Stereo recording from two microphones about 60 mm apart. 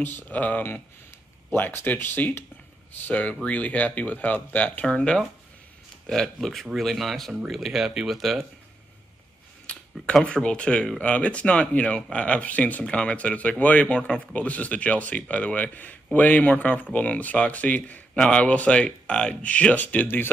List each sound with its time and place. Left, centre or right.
0.0 s speech: left
1.5 s speech: left
3.1 s speech: left
6.0 s speech: centre
9.7 s a sound: left
10.2 s speech: centre